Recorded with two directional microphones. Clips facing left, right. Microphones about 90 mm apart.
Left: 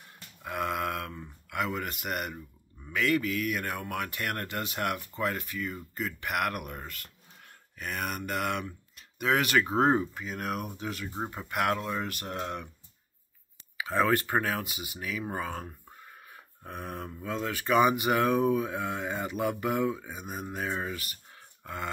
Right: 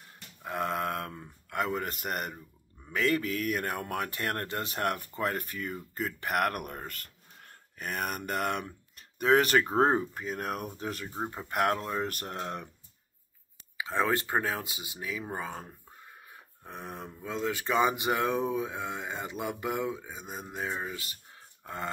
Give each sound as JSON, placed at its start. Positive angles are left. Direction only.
{"t": 0.4, "sound": "speech", "side_deg": -30}
{"t": 13.7, "sound": "speech", "side_deg": -20}
{"t": 16.8, "sound": "speech", "side_deg": -15}
{"t": 20.1, "sound": "speech", "side_deg": 15}
{"t": 20.3, "sound": "speech", "side_deg": -15}